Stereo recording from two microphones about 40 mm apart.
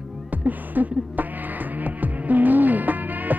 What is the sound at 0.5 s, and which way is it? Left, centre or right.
Music, right.